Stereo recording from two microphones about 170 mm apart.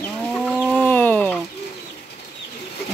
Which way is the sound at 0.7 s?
10° left (ahead or behind).